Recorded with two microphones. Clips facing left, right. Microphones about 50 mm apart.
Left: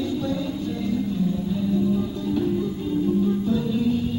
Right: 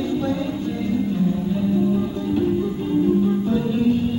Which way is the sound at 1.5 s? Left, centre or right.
Right.